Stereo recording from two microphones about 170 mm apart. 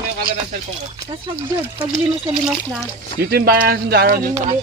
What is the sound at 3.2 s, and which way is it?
Speech, 65° right (ahead or behind).